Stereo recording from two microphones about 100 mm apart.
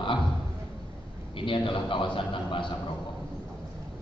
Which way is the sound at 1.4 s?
55° left (ahead or behind).